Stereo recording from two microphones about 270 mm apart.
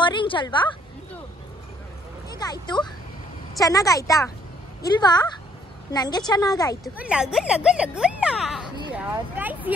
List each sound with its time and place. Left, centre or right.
0.0 s a woman's voice: centre
2.3 s a woman's voice: centre
6.8 s speech: centre